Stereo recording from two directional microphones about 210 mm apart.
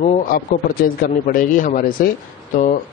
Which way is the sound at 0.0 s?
40° left (ahead or behind).